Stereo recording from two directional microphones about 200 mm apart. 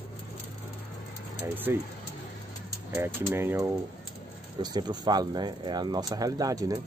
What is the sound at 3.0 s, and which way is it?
Speech, 10° right (ahead or behind).